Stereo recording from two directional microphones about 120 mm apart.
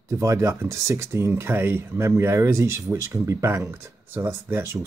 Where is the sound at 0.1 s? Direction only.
25° right (ahead or behind).